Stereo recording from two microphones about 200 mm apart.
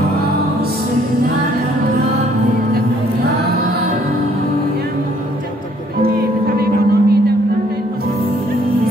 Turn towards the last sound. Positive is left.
turn(degrees=-50)  # may be behind; listen again after turning